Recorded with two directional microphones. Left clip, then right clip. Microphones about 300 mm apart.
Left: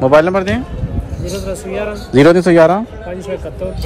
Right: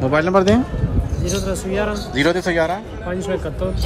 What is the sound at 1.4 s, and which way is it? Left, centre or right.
Speech, centre.